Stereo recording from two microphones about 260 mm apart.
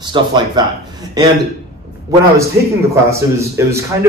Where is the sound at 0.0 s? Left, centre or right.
Centre.